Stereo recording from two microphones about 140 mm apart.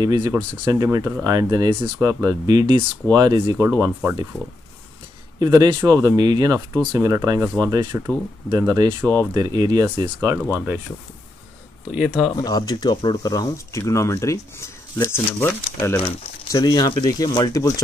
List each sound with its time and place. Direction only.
0.0 s speech: 30° right (ahead or behind)
5.4 s speech: 30° right (ahead or behind)
9.0 s speech: 15° left (ahead or behind)
9.3 s speech: 25° right (ahead or behind)
10.5 s speech: 15° right (ahead or behind)
11.9 s speech: 5° right (ahead or behind)
12.4 s speech: 25° left (ahead or behind)
16.5 s speech: 30° left (ahead or behind)